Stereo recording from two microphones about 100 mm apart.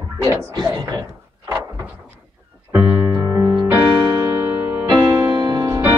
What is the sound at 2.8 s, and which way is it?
Music, 40° right (ahead or behind).